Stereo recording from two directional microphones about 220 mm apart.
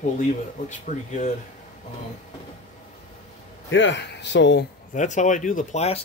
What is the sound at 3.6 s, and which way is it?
A man's voice, 55° left (ahead or behind).